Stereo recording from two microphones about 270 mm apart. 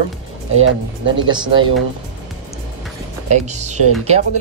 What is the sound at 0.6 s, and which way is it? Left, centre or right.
Speech, right.